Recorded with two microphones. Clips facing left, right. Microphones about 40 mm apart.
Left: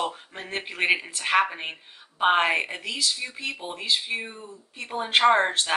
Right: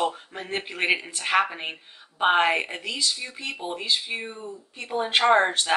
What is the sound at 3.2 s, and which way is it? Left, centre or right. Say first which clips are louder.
Speech: left 2 dB; left.